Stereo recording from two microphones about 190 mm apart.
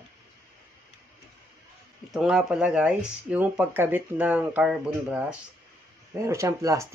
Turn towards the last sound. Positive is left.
turn(degrees=-15)  # may be behind; listen again after turning